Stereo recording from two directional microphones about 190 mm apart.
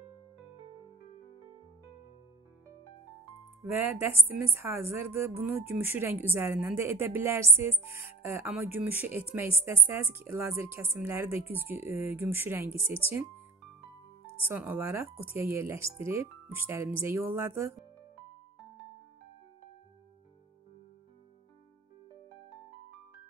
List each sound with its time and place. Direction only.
3.6 s a woman's voice: 10° right (ahead or behind)
14.2 s music: 50° left (ahead or behind)
14.5 s a woman's voice: 10° right (ahead or behind)